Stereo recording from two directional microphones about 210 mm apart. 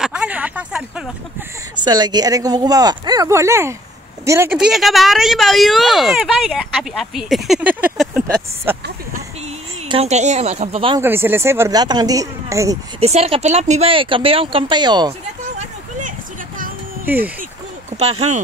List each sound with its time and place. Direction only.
0.0 s speech: 5° right (ahead or behind)
1.8 s speech: 20° right (ahead or behind); by 8.2 s 5° right (ahead or behind)
9.8 s speech: 30° right (ahead or behind)
11.0 s speech: 10° right (ahead or behind)
13.0 s speech: 30° right (ahead or behind)
17.0 s speech: 10° right (ahead or behind)